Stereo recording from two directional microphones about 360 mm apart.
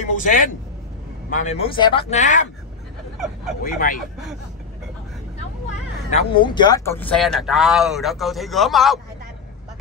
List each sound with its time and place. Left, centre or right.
0.1 s speech: left
3.6 s speech: left
6.0 s speech: centre